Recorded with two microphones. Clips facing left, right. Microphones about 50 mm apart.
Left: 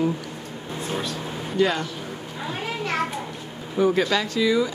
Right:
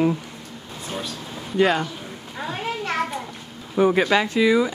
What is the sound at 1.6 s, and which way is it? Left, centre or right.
Speech, centre.